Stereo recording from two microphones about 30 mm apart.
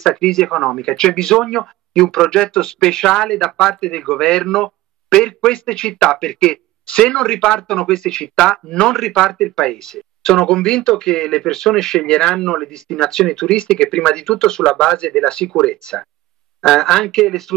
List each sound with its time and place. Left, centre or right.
0.0 s speech: centre
0.5 s speech: centre
0.8 s speech: left
3.8 s speech: left
12.0 s speech: left
15.0 s speech: left
16.6 s speech: centre